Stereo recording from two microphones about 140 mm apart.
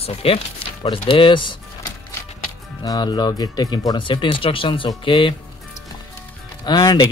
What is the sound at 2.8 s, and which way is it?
Speech, 30° left (ahead or behind).